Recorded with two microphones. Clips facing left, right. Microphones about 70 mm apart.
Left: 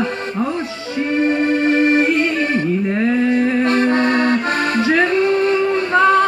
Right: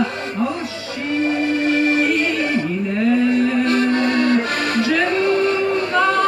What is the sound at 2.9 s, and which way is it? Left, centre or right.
Accordion, left.